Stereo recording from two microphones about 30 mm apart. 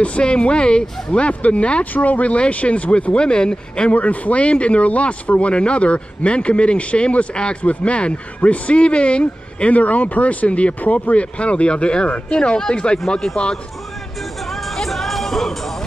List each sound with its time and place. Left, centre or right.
0.2 s speech: left
2.0 s speech: left
2.3 s speech: left
3.1 s speech: left
3.9 s speech: left
9.7 s speech: left
10.8 s speech: left
11.1 s speech: left
13.4 s speech: left
14.5 s music: centre